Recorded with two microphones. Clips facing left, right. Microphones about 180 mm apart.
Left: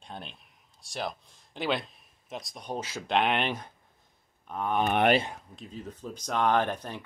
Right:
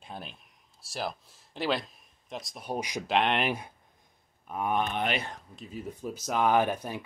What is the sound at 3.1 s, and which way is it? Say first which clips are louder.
Speech: even; centre (ahead or behind).